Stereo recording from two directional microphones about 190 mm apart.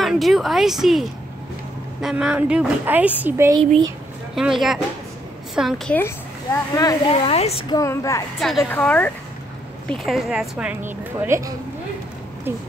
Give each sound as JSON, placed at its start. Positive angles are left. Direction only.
{"t": 0.0, "sound": "a woman's voice", "side_deg": 0}
{"t": 5.9, "sound": "speech", "side_deg": 15}
{"t": 7.1, "sound": "speech", "side_deg": 30}
{"t": 7.7, "sound": "speech", "side_deg": 15}
{"t": 8.4, "sound": "a woman's voice", "side_deg": 0}